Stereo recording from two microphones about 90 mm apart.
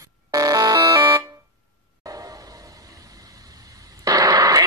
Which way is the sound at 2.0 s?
30° right (ahead or behind).